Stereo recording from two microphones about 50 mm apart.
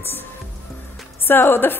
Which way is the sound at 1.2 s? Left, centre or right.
Left.